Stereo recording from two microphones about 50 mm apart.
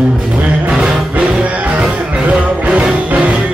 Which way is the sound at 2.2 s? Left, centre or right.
Right.